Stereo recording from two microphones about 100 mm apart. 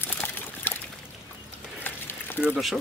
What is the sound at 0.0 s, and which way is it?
Pour, 20° left (ahead or behind).